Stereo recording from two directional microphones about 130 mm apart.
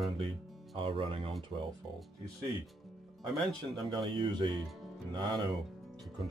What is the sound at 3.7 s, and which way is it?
Speech, 40° right (ahead or behind).